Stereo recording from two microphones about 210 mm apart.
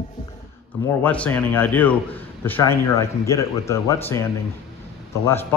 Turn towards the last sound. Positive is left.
turn(degrees=10)  # may be behind; listen again after turning